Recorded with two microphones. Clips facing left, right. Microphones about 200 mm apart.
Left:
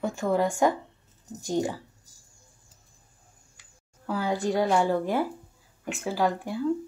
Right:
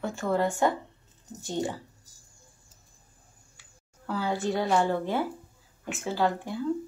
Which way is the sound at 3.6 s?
15° left (ahead or behind).